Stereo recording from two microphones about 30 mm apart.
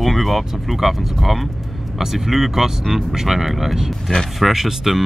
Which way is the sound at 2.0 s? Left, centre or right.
Centre.